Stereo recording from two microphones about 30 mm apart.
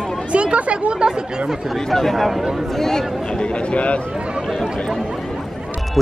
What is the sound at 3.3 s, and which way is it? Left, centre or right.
Speech, left.